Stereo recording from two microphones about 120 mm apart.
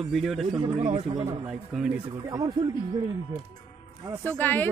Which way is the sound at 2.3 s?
35° right (ahead or behind).